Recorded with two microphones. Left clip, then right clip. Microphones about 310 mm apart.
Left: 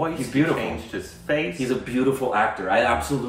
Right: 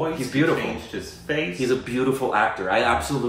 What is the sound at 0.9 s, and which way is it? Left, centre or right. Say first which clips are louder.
Speech: left 3 dB; centre.